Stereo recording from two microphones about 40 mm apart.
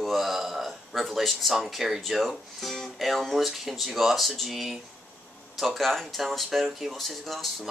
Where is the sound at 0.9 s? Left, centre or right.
Centre.